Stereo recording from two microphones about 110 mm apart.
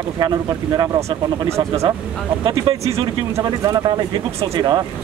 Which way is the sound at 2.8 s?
25° right (ahead or behind).